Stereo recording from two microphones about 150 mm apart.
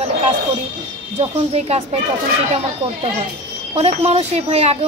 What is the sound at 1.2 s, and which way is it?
Speech, 45° right (ahead or behind).